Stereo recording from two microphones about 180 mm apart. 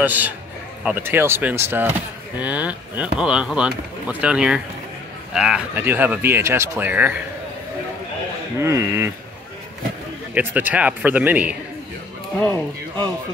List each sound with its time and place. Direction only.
0.0 s speech: 10° right (ahead or behind)
8.5 s speech: 15° right (ahead or behind)
10.3 s speech: 10° right (ahead or behind)
12.4 s speech: 10° left (ahead or behind)